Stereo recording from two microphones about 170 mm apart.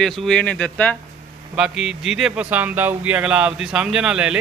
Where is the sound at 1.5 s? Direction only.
5° right (ahead or behind).